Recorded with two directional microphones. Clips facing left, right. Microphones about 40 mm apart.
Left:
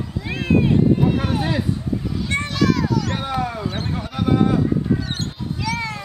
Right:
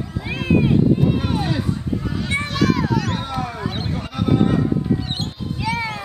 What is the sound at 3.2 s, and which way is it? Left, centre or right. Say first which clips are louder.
Speech: left 2 dB; centre.